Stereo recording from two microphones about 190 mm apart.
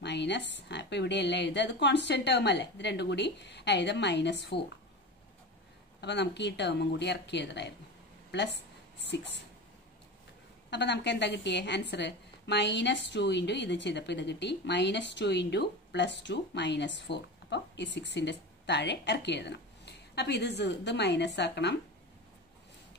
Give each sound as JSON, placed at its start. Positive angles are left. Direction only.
{"t": 0.0, "sound": "a woman's voice", "side_deg": 65}
{"t": 5.9, "sound": "a woman's voice", "side_deg": 65}
{"t": 9.0, "sound": "speech", "side_deg": 65}
{"t": 10.7, "sound": "a woman's voice", "side_deg": 65}